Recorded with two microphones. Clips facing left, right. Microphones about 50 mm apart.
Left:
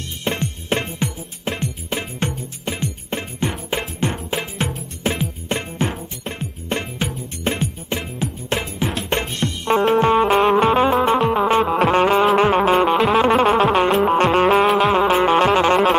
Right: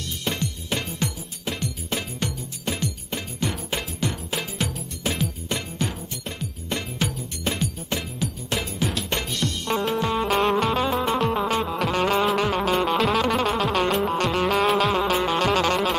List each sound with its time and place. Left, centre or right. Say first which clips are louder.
0.2 s music: left 5 dB; left
10.3 s music: left 6 dB; centre
12.9 s music: left 6 dB; centre; by 16.0 s left